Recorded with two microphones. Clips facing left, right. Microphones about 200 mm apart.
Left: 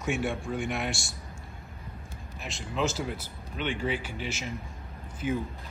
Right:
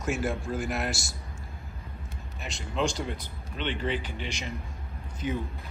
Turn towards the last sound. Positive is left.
turn(degrees=5)  # may be behind; listen again after turning